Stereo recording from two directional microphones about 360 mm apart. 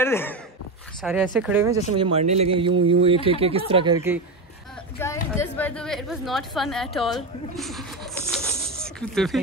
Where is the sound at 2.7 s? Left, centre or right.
Right.